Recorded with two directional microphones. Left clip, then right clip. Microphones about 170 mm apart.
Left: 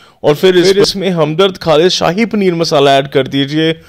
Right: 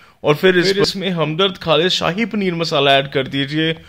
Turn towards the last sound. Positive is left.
turn(degrees=30)  # may be behind; listen again after turning